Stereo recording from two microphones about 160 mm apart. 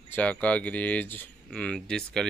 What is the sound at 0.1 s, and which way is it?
Speech, 10° left (ahead or behind).